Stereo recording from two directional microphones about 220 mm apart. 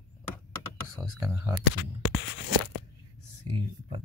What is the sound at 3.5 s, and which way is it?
Speech, 25° right (ahead or behind).